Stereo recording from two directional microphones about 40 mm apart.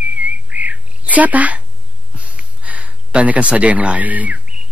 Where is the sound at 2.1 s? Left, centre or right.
Right.